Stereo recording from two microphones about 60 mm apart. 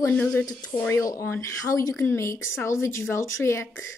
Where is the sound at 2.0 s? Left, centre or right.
Left.